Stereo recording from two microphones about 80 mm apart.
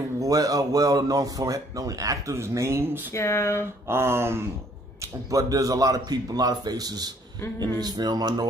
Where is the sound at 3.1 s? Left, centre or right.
Left.